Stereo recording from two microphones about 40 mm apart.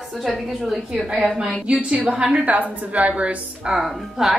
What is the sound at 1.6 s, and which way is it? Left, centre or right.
Speech, right.